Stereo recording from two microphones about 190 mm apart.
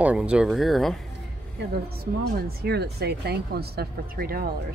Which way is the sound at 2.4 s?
55° right (ahead or behind).